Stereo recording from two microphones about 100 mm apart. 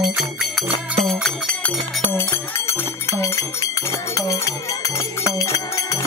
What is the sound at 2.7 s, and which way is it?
Music, 25° left (ahead or behind).